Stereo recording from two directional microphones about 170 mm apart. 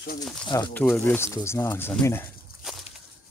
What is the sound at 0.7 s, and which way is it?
Speech, 5° left (ahead or behind).